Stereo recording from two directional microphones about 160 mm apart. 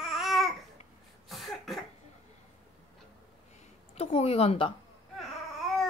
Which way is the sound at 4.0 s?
40° left (ahead or behind).